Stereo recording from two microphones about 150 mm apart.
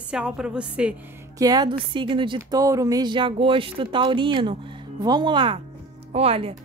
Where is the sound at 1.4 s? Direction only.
25° right (ahead or behind).